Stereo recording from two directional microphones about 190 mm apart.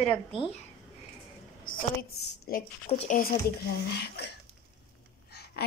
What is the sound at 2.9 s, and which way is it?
Speech, 35° left (ahead or behind).